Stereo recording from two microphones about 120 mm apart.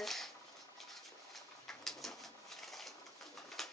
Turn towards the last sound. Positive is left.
turn(degrees=0)  # may be behind; listen again after turning